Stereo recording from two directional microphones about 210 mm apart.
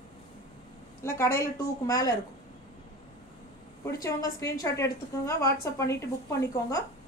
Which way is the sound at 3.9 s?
15° left (ahead or behind).